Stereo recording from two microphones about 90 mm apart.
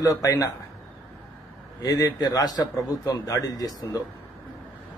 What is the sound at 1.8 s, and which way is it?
A man's voice, 40° left (ahead or behind).